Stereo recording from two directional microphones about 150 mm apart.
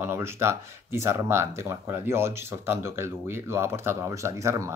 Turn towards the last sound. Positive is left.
turn(degrees=-20)  # may be behind; listen again after turning